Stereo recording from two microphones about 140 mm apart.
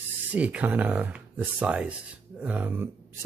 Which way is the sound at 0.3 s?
10° right (ahead or behind).